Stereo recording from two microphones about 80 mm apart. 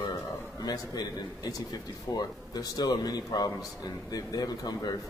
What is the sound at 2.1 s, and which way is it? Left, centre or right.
A man's voice, left.